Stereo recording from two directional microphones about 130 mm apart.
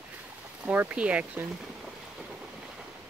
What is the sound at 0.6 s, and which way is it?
Speech, 10° right (ahead or behind).